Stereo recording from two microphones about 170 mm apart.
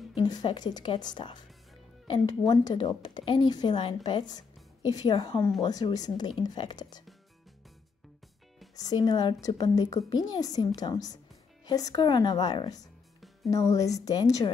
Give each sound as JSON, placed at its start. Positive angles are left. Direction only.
{"t": 0.1, "sound": "speech", "side_deg": 25}
{"t": 8.7, "sound": "speech", "side_deg": 25}